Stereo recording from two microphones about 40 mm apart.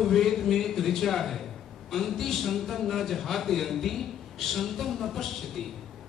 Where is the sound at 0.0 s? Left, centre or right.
Centre.